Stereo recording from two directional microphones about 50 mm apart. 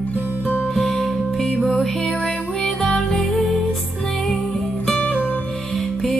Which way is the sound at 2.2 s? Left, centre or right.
Centre.